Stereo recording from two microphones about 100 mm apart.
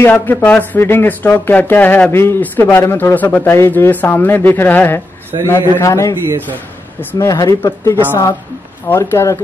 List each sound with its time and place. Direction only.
0.0 s a man's voice: 20° left (ahead or behind)
6.2 s a man's voice: 25° right (ahead or behind)
7.0 s speech: 20° left (ahead or behind)
7.2 s speech: 35° left (ahead or behind)